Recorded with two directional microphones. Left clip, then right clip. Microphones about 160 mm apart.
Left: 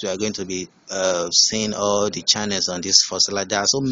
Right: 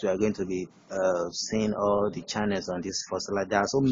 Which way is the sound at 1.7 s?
30° left (ahead or behind).